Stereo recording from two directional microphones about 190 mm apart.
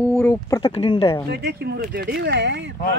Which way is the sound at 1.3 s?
60° right (ahead or behind).